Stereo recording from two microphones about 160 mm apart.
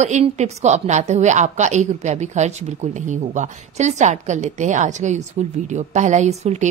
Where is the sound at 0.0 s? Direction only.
45° right (ahead or behind).